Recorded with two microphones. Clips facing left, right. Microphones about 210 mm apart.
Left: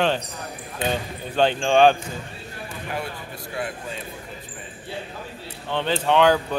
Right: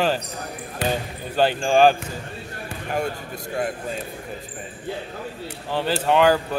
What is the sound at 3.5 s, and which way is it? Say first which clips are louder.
Speech: right 4 dB; 45° right (ahead or behind).